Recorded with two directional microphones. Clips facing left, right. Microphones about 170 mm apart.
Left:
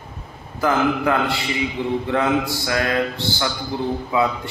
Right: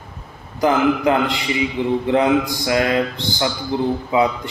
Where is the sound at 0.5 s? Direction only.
20° right (ahead or behind).